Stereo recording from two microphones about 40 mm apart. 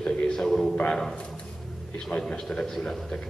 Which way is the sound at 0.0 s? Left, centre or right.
Left.